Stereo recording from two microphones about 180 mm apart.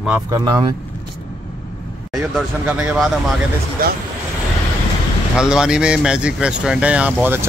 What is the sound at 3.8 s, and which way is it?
Speech, 55° right (ahead or behind).